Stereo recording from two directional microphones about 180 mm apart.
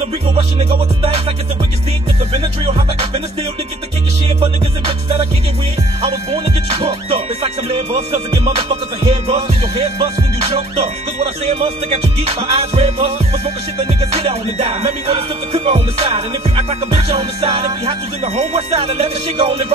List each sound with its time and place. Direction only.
0.4 s music: 35° right (ahead or behind)
2.3 s music: 35° right (ahead or behind)
4.4 s music: 30° right (ahead or behind)
6.3 s music: 35° right (ahead or behind)
14.1 s music: 35° right (ahead or behind)